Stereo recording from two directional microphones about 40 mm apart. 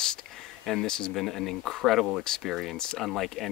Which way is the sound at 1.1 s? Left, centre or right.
Centre.